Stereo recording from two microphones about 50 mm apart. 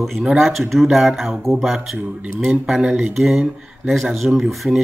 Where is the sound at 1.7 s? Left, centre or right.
Centre.